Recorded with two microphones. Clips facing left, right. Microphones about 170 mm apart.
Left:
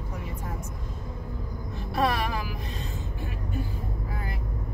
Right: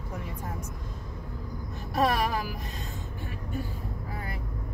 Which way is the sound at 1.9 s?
45° right (ahead or behind).